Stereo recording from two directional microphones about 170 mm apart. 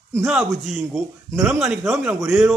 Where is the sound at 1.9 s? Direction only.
15° right (ahead or behind).